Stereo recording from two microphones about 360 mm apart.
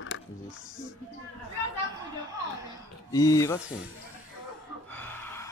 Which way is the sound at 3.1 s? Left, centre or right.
Centre.